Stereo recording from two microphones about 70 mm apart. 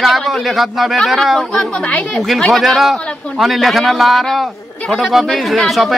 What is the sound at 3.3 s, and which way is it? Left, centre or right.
Speech, centre.